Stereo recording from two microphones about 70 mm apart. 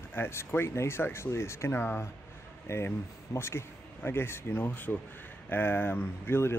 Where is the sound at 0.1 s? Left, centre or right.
Left.